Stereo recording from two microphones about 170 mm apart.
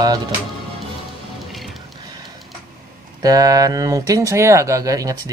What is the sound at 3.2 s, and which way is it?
Speech, 20° right (ahead or behind).